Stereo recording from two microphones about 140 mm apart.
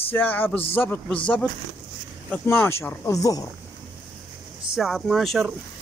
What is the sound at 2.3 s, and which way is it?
Speech, 15° left (ahead or behind).